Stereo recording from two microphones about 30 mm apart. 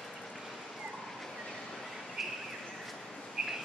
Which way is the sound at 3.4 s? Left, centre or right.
Right.